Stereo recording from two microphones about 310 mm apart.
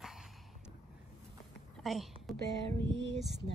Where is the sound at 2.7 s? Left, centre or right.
Centre.